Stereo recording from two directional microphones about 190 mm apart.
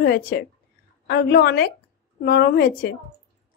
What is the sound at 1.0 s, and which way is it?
A woman's voice, 60° left (ahead or behind).